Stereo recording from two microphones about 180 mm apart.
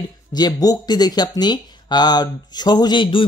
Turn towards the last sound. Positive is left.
turn(degrees=25)  # may be behind; listen again after turning